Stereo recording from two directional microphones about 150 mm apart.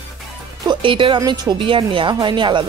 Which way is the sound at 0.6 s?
35° right (ahead or behind).